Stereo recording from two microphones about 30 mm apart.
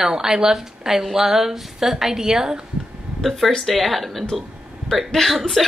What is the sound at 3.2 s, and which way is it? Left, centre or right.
Speech, centre.